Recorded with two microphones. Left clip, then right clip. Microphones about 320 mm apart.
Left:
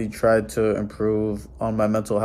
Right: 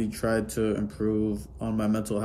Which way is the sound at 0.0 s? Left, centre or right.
Centre.